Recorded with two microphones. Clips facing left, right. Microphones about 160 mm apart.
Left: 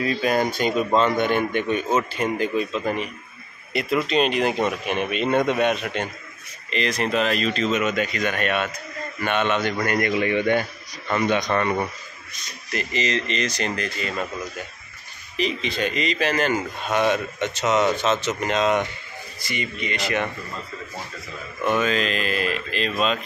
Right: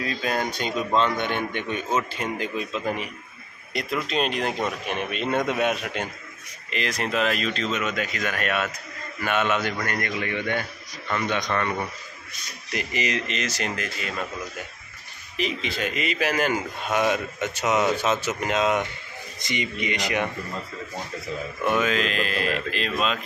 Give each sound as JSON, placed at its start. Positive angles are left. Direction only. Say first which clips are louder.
{"t": 0.0, "sound": "speech", "louder": "left 5 dB", "side_deg": 5}
{"t": 9.8, "sound": "a man's voice", "louder": "left 6 dB", "side_deg": 15}
{"t": 12.7, "sound": "speech", "louder": "left 2 dB", "side_deg": -10}
{"t": 15.3, "sound": "speech", "louder": "left 3 dB", "side_deg": 0}
{"t": 19.4, "sound": "speech", "louder": "right 1 dB", "side_deg": -20}
{"t": 21.6, "sound": "speech", "louder": "left 2 dB", "side_deg": -5}